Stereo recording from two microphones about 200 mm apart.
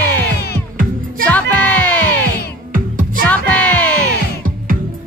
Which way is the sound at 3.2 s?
5° left (ahead or behind).